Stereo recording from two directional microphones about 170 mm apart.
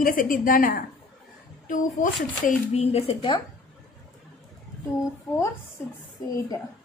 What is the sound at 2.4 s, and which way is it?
Speech, 40° left (ahead or behind).